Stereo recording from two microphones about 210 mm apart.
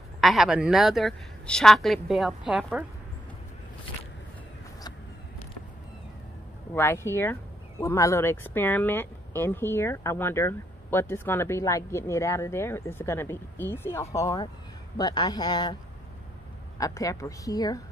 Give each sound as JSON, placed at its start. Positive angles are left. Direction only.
{"t": 0.2, "sound": "a woman's voice", "side_deg": 0}
{"t": 6.7, "sound": "speech", "side_deg": 10}